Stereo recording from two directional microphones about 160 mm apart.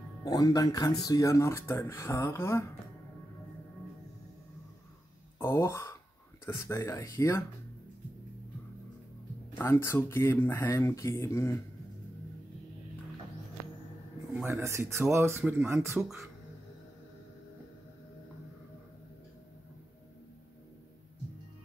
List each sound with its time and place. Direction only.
0.2 s speech: 25° left (ahead or behind)
5.4 s speech: 15° left (ahead or behind)
9.6 s speech: 15° left (ahead or behind)
14.5 s speech: 15° right (ahead or behind)
16.0 s speech: centre (ahead or behind)